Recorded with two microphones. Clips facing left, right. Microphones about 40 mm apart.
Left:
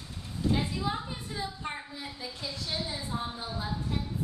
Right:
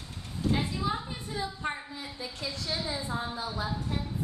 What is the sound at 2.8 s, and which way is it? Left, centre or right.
Speech, right.